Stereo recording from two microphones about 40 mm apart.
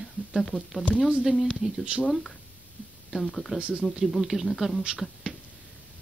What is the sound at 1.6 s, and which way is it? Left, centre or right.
Speech, centre.